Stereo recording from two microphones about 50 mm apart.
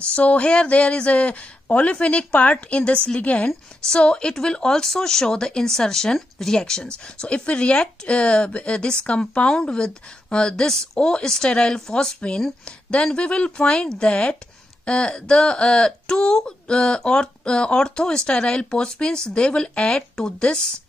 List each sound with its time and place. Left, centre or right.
0.1 s a woman's voice: left; by 10.9 s centre
11.0 s speech: centre
11.2 s a woman's voice: centre